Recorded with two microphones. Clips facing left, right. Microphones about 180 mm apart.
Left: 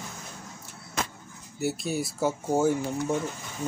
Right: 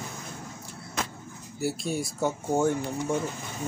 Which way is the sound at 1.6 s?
Centre (ahead or behind).